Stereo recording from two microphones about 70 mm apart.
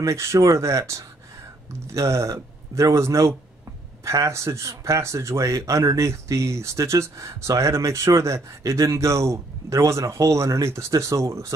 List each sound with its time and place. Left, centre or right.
0.0 s speech: right